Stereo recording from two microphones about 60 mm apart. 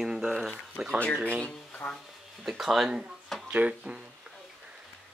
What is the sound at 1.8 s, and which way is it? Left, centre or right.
Speech, left.